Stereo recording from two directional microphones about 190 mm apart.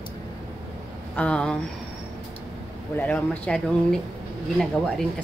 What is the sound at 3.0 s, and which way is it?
Speech, 10° left (ahead or behind).